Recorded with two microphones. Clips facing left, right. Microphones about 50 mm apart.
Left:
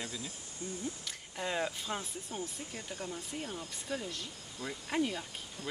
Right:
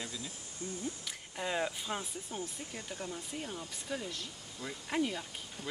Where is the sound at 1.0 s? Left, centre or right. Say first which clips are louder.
Even; centre.